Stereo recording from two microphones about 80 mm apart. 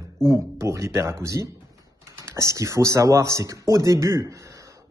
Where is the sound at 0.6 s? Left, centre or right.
Right.